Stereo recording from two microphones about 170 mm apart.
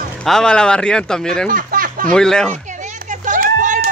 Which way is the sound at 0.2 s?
5° left (ahead or behind).